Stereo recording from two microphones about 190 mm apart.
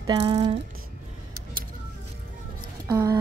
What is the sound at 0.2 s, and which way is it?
Music, 30° right (ahead or behind).